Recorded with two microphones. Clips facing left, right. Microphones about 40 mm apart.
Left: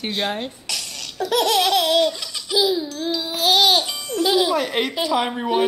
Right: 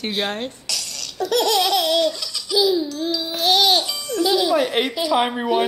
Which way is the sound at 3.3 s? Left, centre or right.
Centre.